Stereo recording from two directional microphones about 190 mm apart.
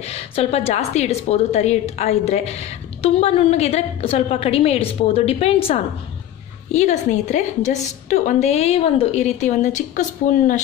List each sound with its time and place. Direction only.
0.0 s a woman's voice: 35° left (ahead or behind)
6.7 s a woman's voice: 35° left (ahead or behind)